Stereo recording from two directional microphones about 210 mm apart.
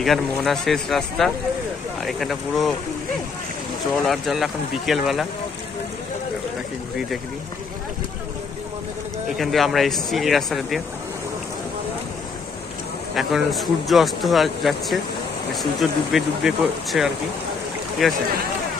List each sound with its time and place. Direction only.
0.0 s speech: centre (ahead or behind)
4.0 s speech: centre (ahead or behind)
9.4 s speech: centre (ahead or behind)
13.1 s speech: centre (ahead or behind)